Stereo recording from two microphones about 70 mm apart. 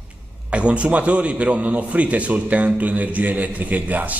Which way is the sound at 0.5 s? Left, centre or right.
Centre.